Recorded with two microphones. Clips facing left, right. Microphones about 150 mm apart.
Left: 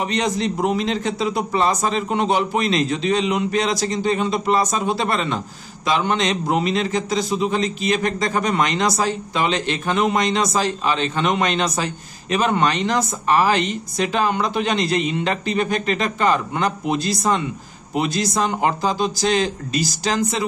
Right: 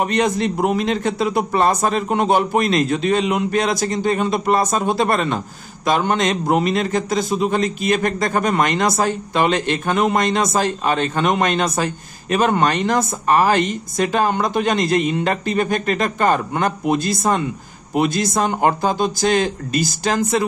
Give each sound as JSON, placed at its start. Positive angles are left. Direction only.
{"t": 0.0, "sound": "a man's voice", "side_deg": -55}